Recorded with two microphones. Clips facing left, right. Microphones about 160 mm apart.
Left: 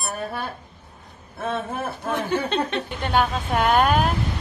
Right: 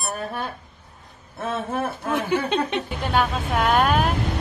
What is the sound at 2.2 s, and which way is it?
Speech, 10° right (ahead or behind).